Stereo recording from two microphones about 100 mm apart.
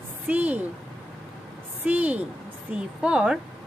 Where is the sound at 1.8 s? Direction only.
15° right (ahead or behind).